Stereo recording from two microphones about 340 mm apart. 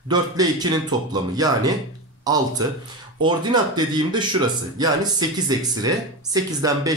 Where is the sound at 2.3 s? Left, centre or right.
Centre.